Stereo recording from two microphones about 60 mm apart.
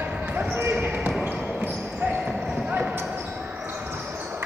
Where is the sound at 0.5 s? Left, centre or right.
Right.